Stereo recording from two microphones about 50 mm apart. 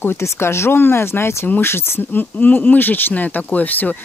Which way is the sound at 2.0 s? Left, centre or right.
Left.